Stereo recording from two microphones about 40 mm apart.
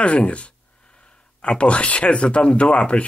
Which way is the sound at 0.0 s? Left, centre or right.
Left.